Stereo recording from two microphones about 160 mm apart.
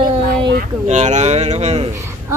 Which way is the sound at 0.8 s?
45° right (ahead or behind).